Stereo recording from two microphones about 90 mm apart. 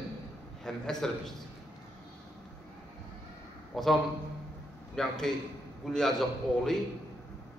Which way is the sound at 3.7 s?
Centre (ahead or behind).